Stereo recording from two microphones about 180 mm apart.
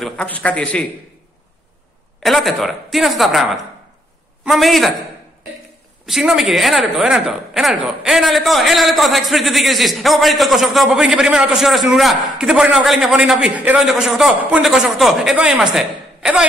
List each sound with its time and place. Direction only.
0.0 s a man's voice: 5° left (ahead or behind)
2.2 s a woman's voice: centre (ahead or behind)
6.0 s a woman's voice: centre (ahead or behind)